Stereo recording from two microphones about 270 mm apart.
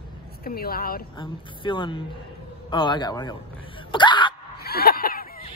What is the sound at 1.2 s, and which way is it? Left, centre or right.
Speech, centre.